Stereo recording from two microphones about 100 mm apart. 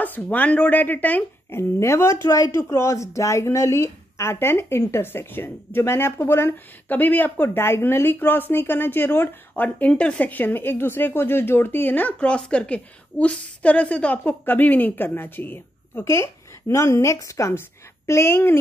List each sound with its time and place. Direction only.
0.0 s speech: 15° left (ahead or behind)